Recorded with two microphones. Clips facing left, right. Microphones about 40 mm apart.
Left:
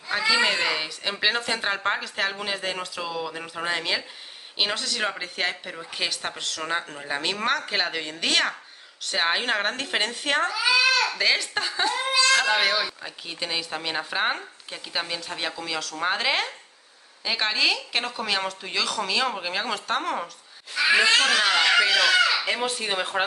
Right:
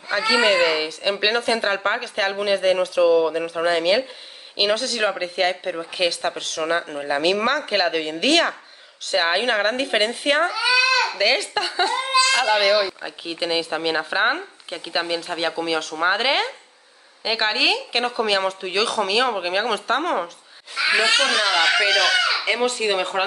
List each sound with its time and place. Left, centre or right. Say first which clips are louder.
0.1 s speech: right 4 dB; centre
21.0 s speech: right 2 dB; right
21.5 s speech: right 1 dB; right
21.8 s speech: right 2 dB; right
22.4 s speech: right 5 dB; centre